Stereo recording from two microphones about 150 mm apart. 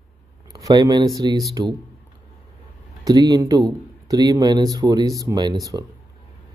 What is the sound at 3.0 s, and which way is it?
Speech, 25° right (ahead or behind).